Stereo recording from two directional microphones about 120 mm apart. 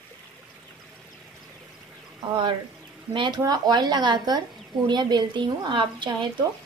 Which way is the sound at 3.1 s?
40° right (ahead or behind).